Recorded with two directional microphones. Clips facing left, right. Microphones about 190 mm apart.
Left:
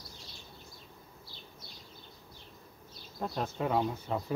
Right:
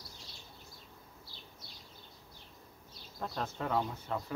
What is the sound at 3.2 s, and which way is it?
Speech, 10° left (ahead or behind).